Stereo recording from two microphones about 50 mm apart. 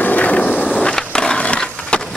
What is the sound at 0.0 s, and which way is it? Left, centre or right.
Skateboard, left.